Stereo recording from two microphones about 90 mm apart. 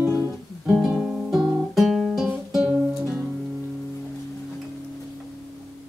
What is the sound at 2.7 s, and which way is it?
Music, 15° right (ahead or behind).